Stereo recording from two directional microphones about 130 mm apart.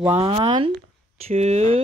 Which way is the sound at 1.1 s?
55° right (ahead or behind).